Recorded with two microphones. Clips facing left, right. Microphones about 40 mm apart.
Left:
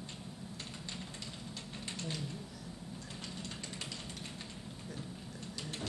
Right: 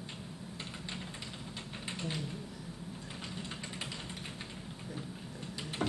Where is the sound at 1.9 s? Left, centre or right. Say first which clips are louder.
Right 3 dB; centre.